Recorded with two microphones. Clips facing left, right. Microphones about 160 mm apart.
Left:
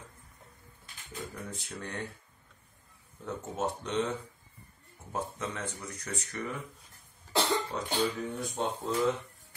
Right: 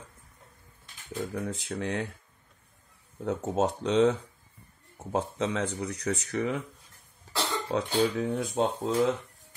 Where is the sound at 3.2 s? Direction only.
85° right.